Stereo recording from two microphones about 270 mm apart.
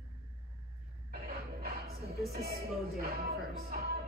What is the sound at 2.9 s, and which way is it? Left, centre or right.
Speech, right.